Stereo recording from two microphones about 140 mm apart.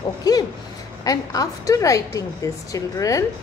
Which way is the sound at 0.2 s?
30° left (ahead or behind).